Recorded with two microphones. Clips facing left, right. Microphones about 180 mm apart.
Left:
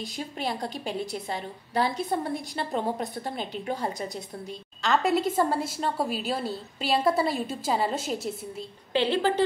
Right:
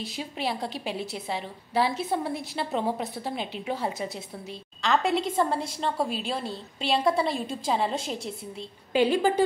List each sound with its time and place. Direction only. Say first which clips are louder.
0.0 s a woman's voice: right 1 dB; centre (ahead or behind)
8.9 s speech: right 2 dB; 10° right (ahead or behind)